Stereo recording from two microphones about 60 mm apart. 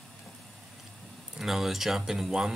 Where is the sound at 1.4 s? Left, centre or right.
Centre.